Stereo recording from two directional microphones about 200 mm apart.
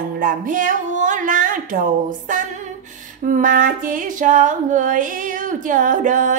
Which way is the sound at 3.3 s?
40° right (ahead or behind).